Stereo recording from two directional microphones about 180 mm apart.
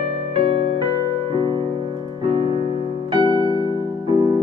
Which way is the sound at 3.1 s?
25° right (ahead or behind).